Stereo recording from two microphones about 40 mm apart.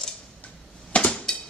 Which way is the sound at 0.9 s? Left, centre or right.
Left.